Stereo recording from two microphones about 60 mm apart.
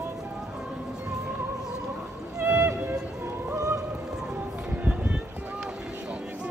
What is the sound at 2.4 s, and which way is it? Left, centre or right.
Music, right.